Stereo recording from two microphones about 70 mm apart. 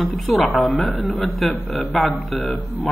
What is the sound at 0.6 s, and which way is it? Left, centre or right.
A man's voice, centre.